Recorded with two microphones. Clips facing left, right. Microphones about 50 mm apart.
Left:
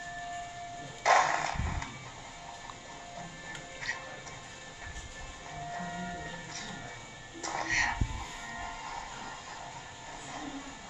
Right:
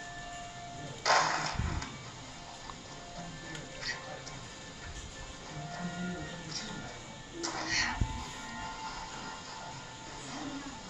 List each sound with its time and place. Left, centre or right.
1.0 s music: centre
5.7 s a sound: centre
7.4 s music: centre